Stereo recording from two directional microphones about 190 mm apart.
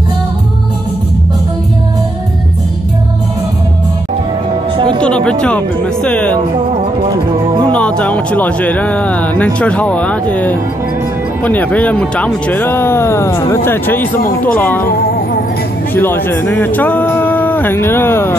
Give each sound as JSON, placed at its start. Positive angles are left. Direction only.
{"t": 5.0, "sound": "speech", "side_deg": 5}
{"t": 7.7, "sound": "speech", "side_deg": 5}
{"t": 14.9, "sound": "music", "side_deg": 55}
{"t": 15.9, "sound": "speech", "side_deg": 10}